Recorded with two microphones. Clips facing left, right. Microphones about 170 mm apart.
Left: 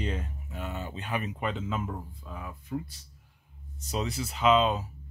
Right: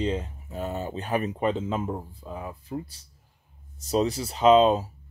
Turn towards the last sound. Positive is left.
turn(degrees=-40)  # may be behind; listen again after turning